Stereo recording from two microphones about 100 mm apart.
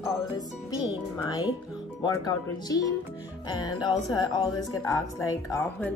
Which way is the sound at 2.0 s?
40° left (ahead or behind).